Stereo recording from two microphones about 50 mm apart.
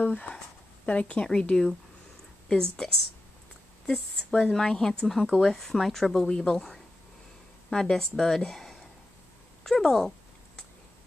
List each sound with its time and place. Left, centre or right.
0.0 s speech: left
1.5 s a woman's voice: centre